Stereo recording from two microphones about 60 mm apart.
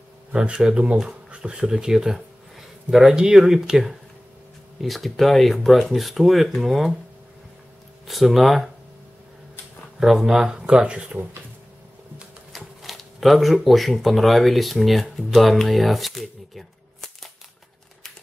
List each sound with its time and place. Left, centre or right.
0.3 s speech: centre
8.1 s speech: centre
9.9 s speech: centre
10.7 s speech: centre
12.5 s speech: centre